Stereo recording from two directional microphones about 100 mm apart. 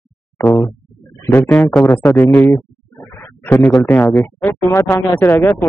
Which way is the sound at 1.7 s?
5° left (ahead or behind).